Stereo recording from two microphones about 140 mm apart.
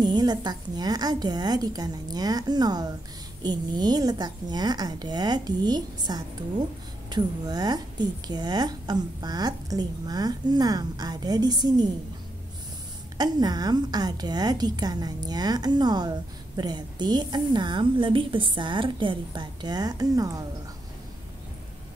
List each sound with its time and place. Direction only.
0.0 s a woman's voice: 30° right (ahead or behind)
13.2 s a woman's voice: 30° right (ahead or behind)